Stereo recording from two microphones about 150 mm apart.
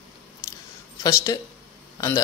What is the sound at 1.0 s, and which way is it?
Speech, 25° left (ahead or behind).